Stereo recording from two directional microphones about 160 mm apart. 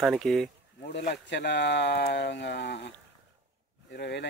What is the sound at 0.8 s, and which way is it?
Speech, 90° left.